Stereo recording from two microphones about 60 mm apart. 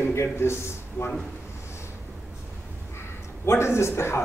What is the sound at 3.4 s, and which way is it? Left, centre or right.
Speech, left.